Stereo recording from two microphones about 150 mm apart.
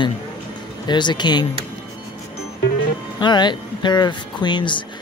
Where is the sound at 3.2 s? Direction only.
30° left (ahead or behind).